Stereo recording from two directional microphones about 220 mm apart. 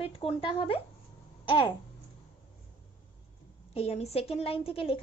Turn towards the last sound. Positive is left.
turn(degrees=25)  # may be behind; listen again after turning